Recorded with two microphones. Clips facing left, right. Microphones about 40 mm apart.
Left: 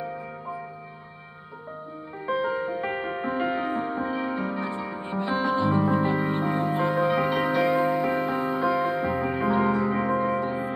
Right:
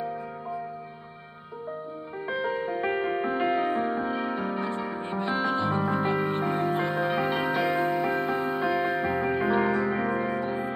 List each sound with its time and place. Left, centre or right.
2.2 s music: centre
8.5 s music: centre